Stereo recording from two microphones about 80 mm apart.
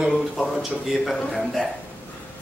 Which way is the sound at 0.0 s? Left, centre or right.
Centre.